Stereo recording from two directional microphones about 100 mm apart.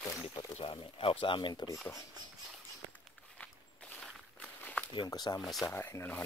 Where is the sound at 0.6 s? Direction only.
65° left (ahead or behind).